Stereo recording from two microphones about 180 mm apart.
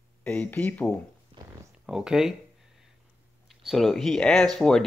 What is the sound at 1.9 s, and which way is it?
Speech, 5° right (ahead or behind).